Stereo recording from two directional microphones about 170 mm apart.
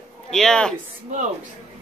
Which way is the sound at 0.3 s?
5° left (ahead or behind).